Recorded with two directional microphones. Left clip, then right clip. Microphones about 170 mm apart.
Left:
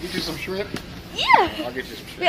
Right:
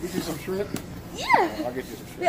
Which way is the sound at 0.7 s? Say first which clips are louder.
Left 2 dB; 5° left (ahead or behind).